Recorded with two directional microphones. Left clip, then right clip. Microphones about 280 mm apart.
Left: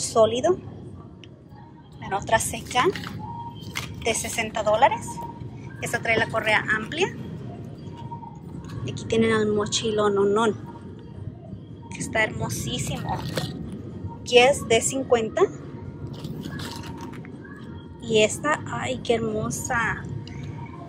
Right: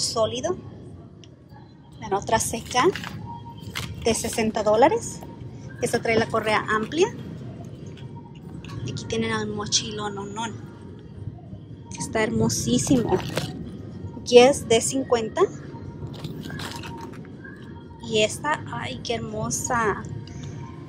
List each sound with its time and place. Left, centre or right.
0.0 s speech: centre
2.0 s a woman's voice: centre
4.0 s a woman's voice: centre
8.8 s speech: centre
11.9 s a woman's voice: centre
18.0 s a woman's voice: centre